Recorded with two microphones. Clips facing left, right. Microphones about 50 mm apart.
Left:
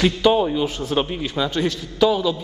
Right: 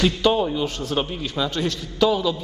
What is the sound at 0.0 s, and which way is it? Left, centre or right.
A man's voice, centre.